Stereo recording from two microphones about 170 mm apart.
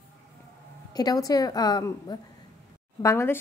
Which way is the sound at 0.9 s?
20° left (ahead or behind).